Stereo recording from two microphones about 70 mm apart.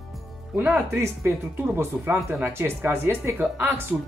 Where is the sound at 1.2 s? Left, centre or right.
Right.